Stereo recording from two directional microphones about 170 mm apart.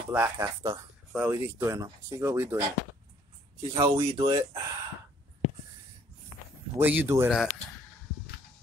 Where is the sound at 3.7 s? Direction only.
30° right (ahead or behind).